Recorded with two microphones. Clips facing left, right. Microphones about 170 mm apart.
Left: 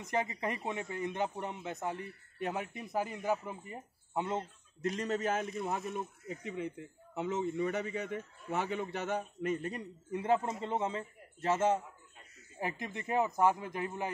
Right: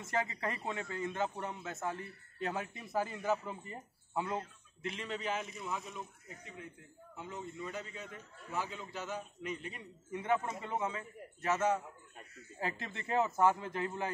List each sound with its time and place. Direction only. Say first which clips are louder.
0.0 s a man's voice: left 2 dB; 15° left (ahead or behind)
4.8 s a man's voice: left 6 dB; 40° left (ahead or behind)
6.4 s a man's voice: left 12 dB; 75° left (ahead or behind); by 11.8 s 30° left (ahead or behind)
12.5 s a man's voice: left 2 dB; 15° left (ahead or behind)